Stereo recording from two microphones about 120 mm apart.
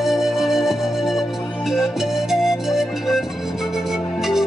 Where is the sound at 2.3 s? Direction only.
5° right (ahead or behind).